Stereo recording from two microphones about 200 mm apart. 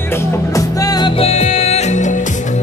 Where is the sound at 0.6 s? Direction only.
15° left (ahead or behind).